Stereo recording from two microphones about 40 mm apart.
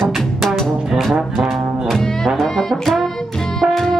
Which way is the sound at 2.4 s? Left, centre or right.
Centre.